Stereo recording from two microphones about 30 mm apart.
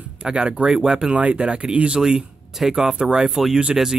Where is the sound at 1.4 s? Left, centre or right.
Right.